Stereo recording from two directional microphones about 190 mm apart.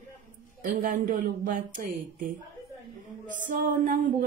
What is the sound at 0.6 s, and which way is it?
Speech, 45° right (ahead or behind).